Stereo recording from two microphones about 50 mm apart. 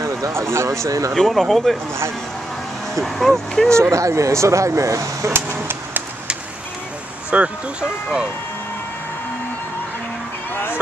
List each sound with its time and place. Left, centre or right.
0.3 s speech: right
1.1 s speech: centre
2.9 s speech: centre
3.9 s speech: right
5.3 s chop: right
7.2 s speech: right
7.8 s speech: centre
10.5 s a sound: left